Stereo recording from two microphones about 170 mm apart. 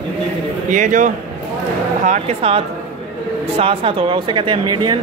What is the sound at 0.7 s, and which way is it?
A man's voice, 50° right (ahead or behind).